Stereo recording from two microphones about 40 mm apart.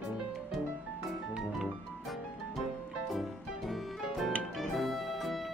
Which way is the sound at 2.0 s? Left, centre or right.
Centre.